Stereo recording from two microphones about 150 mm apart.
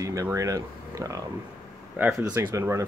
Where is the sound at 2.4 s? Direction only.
20° right (ahead or behind).